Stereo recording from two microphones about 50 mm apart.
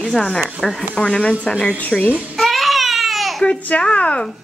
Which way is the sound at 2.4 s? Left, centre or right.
Centre.